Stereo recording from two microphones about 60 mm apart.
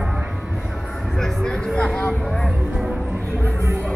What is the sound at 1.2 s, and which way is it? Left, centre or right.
Music, centre.